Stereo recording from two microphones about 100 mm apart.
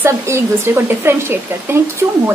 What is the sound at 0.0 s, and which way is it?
Speech, 25° right (ahead or behind).